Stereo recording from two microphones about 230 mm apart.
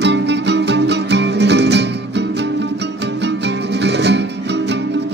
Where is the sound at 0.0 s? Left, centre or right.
Right.